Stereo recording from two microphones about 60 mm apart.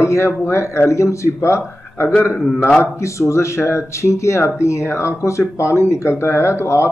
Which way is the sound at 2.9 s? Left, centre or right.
Left.